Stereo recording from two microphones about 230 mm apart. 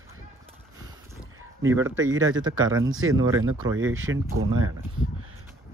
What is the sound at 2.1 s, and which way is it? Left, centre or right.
Speech, right.